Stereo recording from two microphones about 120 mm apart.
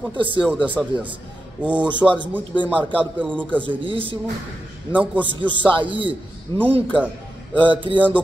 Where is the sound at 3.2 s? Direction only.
15° right (ahead or behind).